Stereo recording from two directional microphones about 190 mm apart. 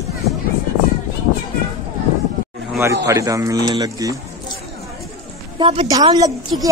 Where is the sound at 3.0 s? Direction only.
15° right (ahead or behind).